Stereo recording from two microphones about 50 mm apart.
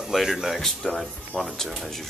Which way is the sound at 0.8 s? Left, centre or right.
Centre.